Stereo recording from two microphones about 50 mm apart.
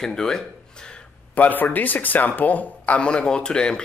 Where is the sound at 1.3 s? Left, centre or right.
Left.